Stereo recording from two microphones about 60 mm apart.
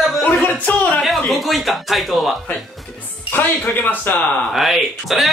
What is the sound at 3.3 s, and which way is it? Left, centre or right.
Speech, left.